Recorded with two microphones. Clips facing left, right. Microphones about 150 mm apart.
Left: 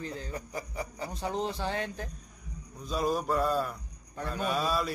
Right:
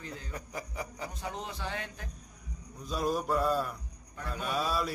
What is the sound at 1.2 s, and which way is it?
Speech, 35° left (ahead or behind).